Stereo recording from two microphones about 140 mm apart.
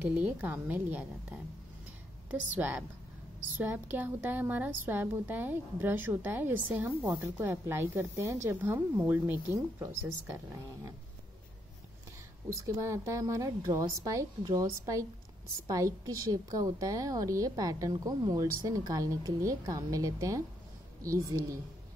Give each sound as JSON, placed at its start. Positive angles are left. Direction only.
{"t": 0.0, "sound": "a woman's voice", "side_deg": -15}
{"t": 2.5, "sound": "a woman's voice", "side_deg": -15}
{"t": 12.5, "sound": "a woman's voice", "side_deg": -20}